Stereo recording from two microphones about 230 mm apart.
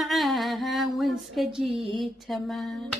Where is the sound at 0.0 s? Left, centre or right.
Centre.